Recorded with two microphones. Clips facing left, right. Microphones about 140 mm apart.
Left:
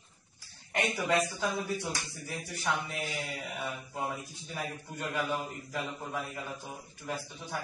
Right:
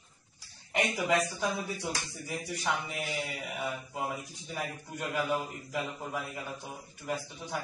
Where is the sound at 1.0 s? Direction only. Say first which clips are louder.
Even; 5° left (ahead or behind).